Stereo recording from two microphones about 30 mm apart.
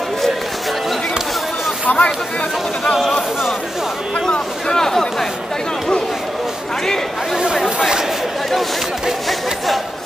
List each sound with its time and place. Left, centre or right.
1.9 s speech: left
4.3 s speech: left